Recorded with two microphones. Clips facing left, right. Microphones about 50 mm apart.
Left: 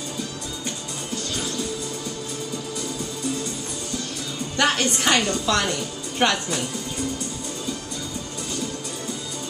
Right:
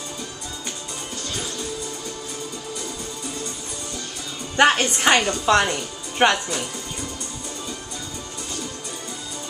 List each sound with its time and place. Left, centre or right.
4.6 s a woman's voice: right